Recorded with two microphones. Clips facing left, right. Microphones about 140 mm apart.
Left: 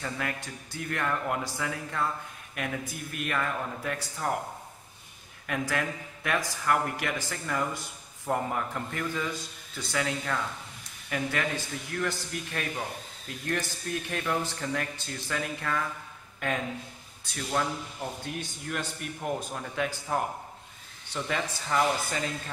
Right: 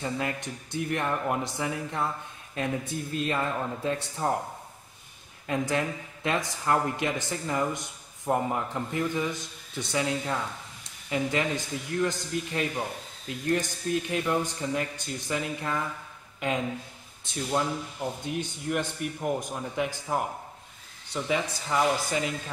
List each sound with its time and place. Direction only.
0.0 s speech: 20° right (ahead or behind)
5.5 s speech: 25° right (ahead or behind)